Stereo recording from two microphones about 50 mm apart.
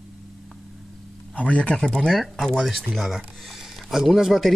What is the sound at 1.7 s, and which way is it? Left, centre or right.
Speech, centre.